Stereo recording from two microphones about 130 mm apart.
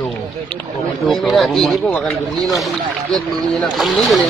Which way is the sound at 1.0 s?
Centre (ahead or behind).